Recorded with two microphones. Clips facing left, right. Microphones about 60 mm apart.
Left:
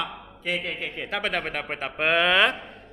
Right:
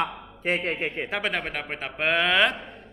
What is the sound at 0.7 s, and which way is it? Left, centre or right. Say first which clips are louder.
Speech: right 4 dB; right.